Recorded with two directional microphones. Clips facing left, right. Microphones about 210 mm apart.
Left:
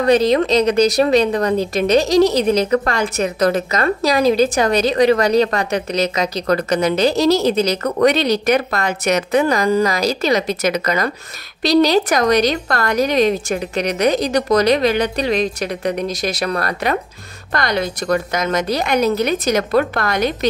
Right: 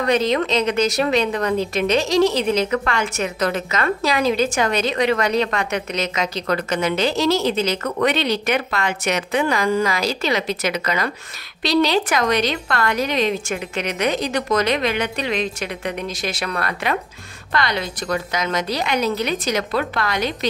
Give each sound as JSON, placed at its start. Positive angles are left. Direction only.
{"t": 0.0, "sound": "a woman's voice", "side_deg": 35}